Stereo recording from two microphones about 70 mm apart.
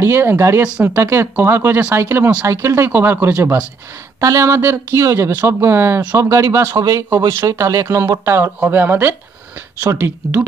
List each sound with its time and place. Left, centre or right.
0.0 s speech: right
4.2 s speech: right
4.5 s speech: right
5.3 s speech: right
6.8 s speech: right
8.5 s speech: right